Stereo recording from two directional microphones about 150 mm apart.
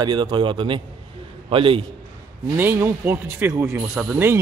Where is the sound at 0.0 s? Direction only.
30° right (ahead or behind).